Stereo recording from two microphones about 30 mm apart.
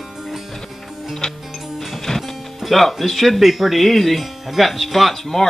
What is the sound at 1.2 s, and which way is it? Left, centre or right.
Music, left.